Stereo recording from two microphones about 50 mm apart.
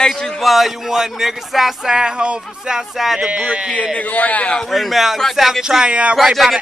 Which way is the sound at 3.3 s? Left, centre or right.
Right.